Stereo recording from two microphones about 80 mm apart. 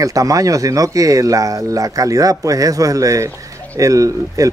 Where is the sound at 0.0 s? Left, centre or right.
Right.